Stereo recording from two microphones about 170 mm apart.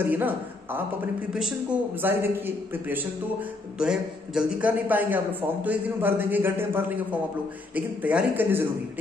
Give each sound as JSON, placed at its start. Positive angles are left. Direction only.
{"t": 0.0, "sound": "a man's voice", "side_deg": -10}
{"t": 2.0, "sound": "a man's voice", "side_deg": -10}